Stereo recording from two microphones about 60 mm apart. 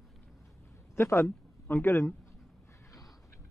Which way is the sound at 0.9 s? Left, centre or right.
Left.